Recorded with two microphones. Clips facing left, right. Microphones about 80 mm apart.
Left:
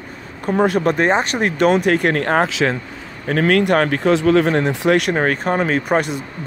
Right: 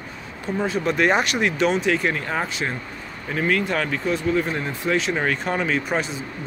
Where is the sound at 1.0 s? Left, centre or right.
Left.